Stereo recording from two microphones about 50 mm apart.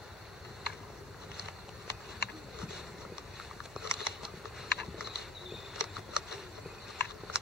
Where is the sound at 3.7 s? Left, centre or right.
Centre.